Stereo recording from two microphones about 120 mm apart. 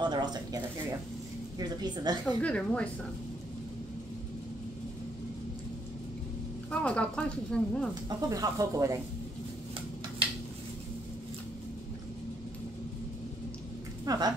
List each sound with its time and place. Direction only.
0.0 s a sound: 35° right (ahead or behind)
1.6 s a woman's voice: 35° right (ahead or behind)
2.2 s speech: 10° left (ahead or behind)
6.7 s speech: 10° left (ahead or behind)
7.9 s speech: 30° right (ahead or behind)
14.1 s speech: 30° right (ahead or behind)